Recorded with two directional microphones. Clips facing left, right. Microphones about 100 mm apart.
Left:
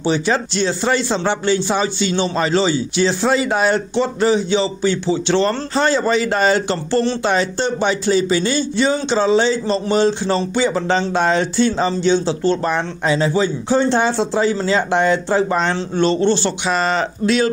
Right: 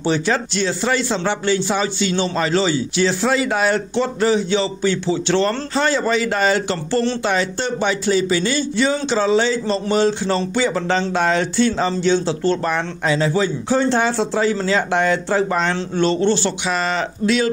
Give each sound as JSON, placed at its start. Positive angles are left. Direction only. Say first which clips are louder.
{"t": 0.0, "sound": "speech", "louder": "left 1 dB", "side_deg": 15}
{"t": 0.6, "sound": "a man's voice", "louder": "left 2 dB", "side_deg": 25}